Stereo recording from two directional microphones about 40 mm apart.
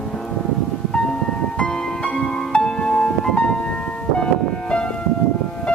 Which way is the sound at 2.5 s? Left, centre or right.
Left.